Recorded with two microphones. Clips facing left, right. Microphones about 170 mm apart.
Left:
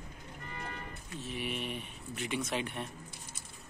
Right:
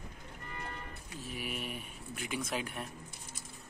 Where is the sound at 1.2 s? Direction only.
5° right (ahead or behind).